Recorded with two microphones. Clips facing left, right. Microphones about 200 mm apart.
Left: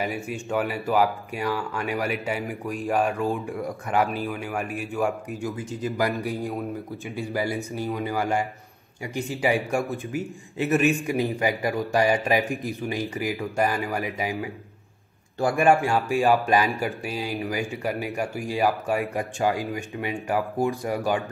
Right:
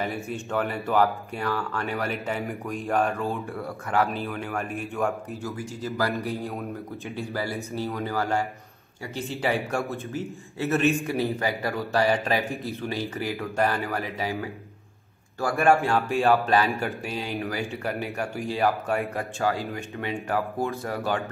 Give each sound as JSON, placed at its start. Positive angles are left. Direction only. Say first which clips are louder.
{"t": 0.0, "sound": "speech", "louder": "left 1 dB", "side_deg": 10}